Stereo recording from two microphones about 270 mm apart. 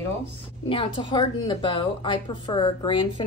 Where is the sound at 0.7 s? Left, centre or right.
Centre.